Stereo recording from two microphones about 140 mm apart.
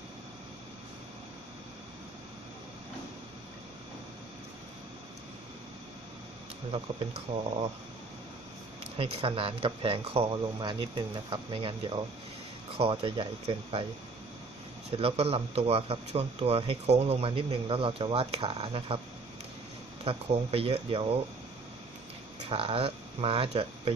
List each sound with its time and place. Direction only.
6.7 s a man's voice: 45° right (ahead or behind)
8.9 s speech: 40° right (ahead or behind)
14.9 s a man's voice: 45° right (ahead or behind)
20.1 s speech: 40° right (ahead or behind)
22.5 s speech: 40° right (ahead or behind)